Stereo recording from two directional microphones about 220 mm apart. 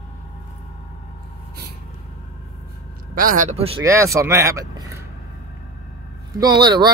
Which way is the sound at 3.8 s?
15° right (ahead or behind).